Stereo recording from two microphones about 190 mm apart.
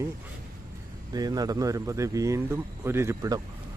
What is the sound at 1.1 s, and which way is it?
Speech, 20° right (ahead or behind).